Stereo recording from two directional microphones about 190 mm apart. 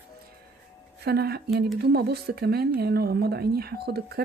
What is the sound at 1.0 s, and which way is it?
Speech, 55° right (ahead or behind).